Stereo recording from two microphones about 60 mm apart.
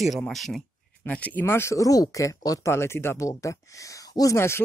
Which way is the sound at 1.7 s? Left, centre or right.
Left.